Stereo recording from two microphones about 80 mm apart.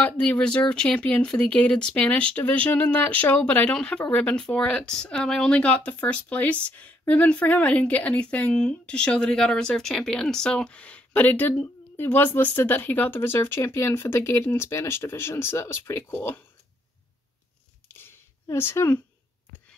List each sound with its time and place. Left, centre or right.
0.0 s speech: centre; by 16.0 s left
16.1 s speech: left
17.9 s a sound: left